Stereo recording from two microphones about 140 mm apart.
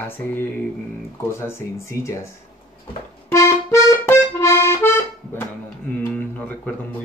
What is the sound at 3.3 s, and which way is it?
Accordion, 20° left (ahead or behind).